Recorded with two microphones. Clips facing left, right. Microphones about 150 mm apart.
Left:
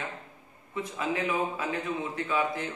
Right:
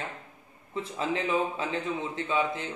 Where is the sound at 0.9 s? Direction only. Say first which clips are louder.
Right 2 dB; 25° right (ahead or behind).